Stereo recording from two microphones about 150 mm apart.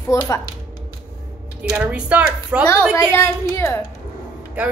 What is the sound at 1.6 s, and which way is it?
Speech, 10° right (ahead or behind).